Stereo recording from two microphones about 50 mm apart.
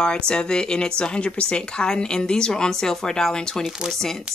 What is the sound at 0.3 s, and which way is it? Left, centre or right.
A woman's voice, centre.